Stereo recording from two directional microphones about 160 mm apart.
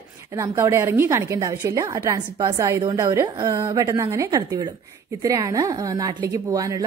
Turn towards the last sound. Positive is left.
turn(degrees=-20)  # may be behind; listen again after turning